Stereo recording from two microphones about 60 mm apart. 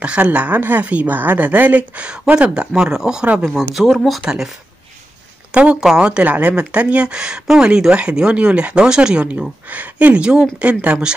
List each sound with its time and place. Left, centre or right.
0.0 s a woman's voice: right; by 4.2 s centre
4.2 s speech: centre
5.5 s a woman's voice: right
9.7 s a woman's voice: right